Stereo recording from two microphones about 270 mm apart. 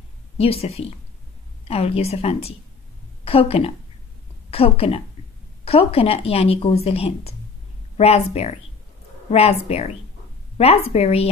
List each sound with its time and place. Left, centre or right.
0.4 s speech: left